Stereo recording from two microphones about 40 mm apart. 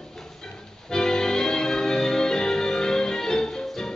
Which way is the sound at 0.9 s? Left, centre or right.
Centre.